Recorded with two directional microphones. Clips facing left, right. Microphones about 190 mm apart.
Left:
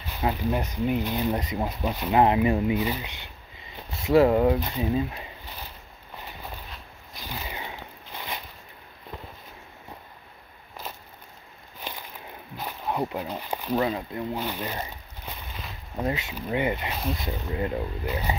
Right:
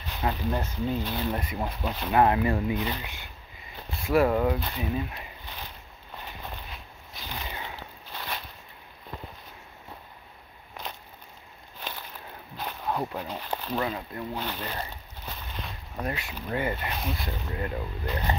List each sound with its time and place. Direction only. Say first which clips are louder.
0.2 s speech: left 3 dB; 15° left (ahead or behind)
7.2 s a sound: left 2 dB; 10° left (ahead or behind)
12.5 s a sound: left 2 dB; 10° left (ahead or behind)
13.8 s speech: left 4 dB; 25° left (ahead or behind)
14.3 s speech: left 1 dB; 10° left (ahead or behind)
16.0 s speech: left 4 dB; 20° left (ahead or behind)
16.9 s speech: left 3 dB; centre (ahead or behind)
17.2 s speech: left 4 dB; 20° left (ahead or behind)
18.0 s speech: left 2 dB; 10° left (ahead or behind)